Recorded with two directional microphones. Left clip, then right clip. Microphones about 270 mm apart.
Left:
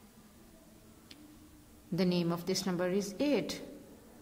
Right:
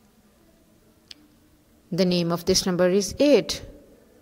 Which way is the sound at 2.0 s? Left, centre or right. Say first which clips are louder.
Right 10 dB; right.